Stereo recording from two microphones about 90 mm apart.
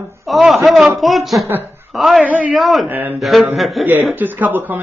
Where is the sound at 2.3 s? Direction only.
20° right (ahead or behind).